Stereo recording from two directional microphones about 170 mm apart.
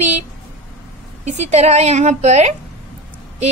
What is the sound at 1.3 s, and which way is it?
A woman's voice, 40° right (ahead or behind).